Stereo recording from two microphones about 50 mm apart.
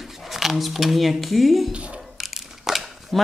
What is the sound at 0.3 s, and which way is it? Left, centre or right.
Speech, centre.